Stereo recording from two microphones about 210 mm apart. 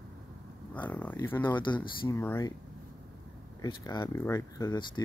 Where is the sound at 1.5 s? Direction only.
20° left (ahead or behind).